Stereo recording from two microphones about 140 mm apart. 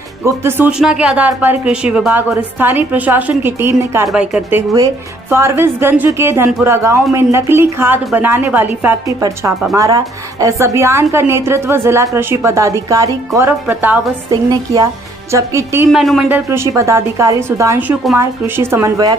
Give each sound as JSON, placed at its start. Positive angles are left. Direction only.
{"t": 0.2, "sound": "speech", "side_deg": -15}
{"t": 4.1, "sound": "speech", "side_deg": -5}
{"t": 4.7, "sound": "speech", "side_deg": -20}
{"t": 9.8, "sound": "a woman's voice", "side_deg": -25}
{"t": 14.3, "sound": "a woman's voice", "side_deg": -25}
{"t": 15.9, "sound": "speech", "side_deg": 0}
{"t": 16.3, "sound": "a woman's voice", "side_deg": -15}